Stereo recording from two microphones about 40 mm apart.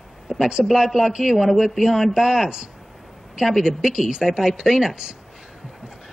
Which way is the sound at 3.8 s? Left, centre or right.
Centre.